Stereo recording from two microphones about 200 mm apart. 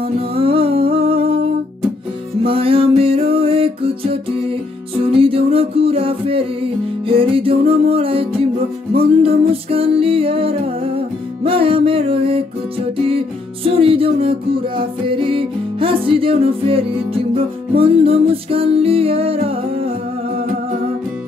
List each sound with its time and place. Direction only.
0.0 s music: 30° right (ahead or behind)
13.7 s music: 30° right (ahead or behind)